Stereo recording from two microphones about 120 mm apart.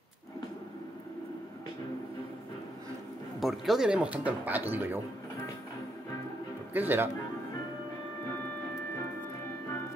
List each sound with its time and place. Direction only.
3.3 s speech: centre (ahead or behind)
6.7 s speech: 15° right (ahead or behind)